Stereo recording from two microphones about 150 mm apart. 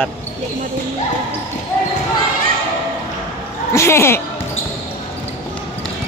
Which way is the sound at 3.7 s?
15° left (ahead or behind).